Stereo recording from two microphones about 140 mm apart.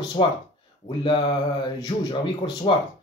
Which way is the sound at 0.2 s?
35° left (ahead or behind).